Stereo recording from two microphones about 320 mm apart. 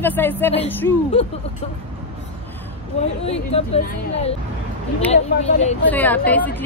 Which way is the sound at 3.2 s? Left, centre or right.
Centre.